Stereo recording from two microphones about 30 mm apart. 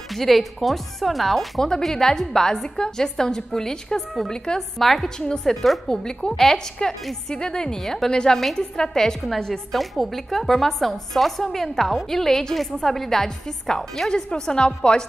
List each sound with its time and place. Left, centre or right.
0.1 s speech: centre
4.6 s a woman's voice: centre; by 7.8 s left
7.8 s speech: centre
8.1 s a woman's voice: left
9.5 s speech: centre
14.1 s a woman's voice: left